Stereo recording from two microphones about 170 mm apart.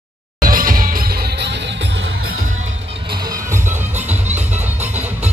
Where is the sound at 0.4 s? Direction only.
55° right (ahead or behind); by 1.6 s 70° right (ahead or behind).